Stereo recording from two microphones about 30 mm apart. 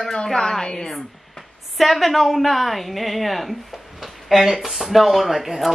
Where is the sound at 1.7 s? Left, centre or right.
Centre.